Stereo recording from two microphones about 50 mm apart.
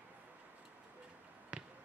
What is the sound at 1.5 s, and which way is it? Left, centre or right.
Basketball bounce, right.